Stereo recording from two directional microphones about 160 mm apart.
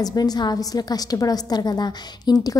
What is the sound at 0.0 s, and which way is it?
A woman's voice, 25° left (ahead or behind).